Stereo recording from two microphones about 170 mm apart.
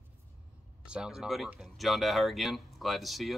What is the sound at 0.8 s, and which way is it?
Speech, 5° right (ahead or behind).